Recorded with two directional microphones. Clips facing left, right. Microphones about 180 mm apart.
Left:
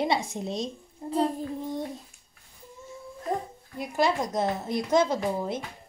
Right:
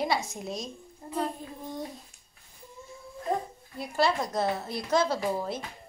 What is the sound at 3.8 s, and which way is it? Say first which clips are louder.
A woman's voice: left 1 dB; 15° left (ahead or behind).